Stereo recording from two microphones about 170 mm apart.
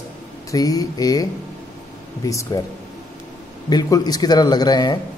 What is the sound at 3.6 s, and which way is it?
Speech, 20° left (ahead or behind).